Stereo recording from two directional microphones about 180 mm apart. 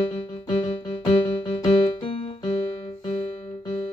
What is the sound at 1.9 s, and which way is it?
Music, 30° left (ahead or behind).